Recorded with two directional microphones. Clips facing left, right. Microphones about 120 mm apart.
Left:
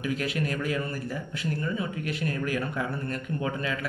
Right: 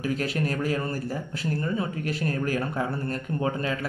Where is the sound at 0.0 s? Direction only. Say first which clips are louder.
Right 2 dB; 35° right (ahead or behind).